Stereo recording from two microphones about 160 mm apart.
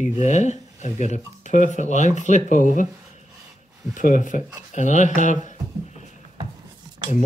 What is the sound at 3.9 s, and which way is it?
Speech, 55° left (ahead or behind).